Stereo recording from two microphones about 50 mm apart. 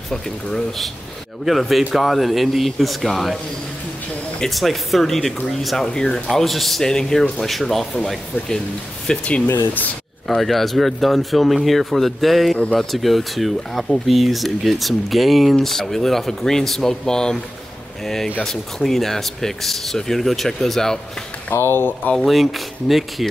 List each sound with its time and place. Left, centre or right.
0.1 s speech: centre
4.5 s speech: centre
5.9 s speech: centre
6.2 s speech: centre
9.0 s speech: centre
10.2 s speech: centre
21.5 s speech: left
22.2 s speech: centre